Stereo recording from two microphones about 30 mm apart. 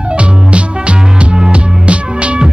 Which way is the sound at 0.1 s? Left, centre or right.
Right.